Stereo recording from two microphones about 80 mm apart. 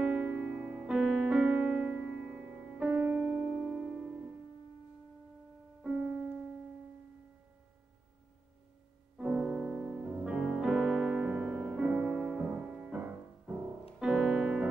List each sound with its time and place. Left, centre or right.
0.0 s music: centre
3.5 s music: centre
5.8 s music: centre
9.2 s music: centre
13.9 s piano: centre